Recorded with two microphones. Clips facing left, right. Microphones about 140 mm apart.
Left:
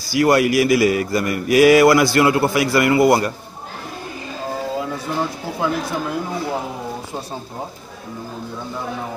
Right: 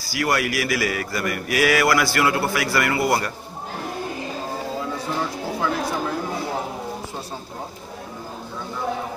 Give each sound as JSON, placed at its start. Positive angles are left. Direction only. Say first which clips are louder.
{"t": 0.1, "sound": "speech", "louder": "left 8 dB", "side_deg": 25}